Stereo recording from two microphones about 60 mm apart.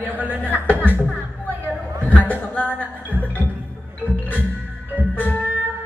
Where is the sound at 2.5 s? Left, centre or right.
Left.